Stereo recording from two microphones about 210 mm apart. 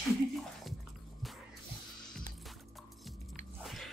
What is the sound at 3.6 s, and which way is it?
Biting, centre (ahead or behind).